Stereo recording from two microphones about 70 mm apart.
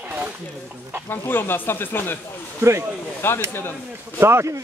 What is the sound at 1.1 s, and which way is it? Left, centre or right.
Speech, left.